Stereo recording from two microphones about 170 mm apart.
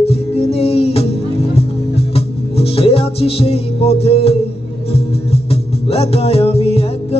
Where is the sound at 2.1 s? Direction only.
35° left (ahead or behind).